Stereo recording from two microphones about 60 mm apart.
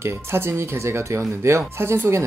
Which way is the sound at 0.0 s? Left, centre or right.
Right.